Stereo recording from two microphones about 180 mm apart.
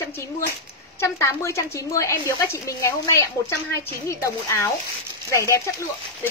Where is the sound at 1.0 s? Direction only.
15° left (ahead or behind).